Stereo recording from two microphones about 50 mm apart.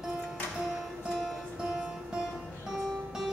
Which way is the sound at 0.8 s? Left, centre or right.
Centre.